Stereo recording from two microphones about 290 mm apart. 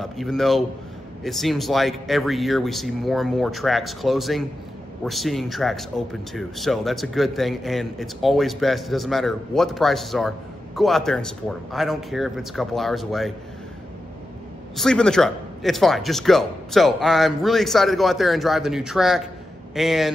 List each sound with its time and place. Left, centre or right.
0.0 s speech: centre
14.8 s speech: centre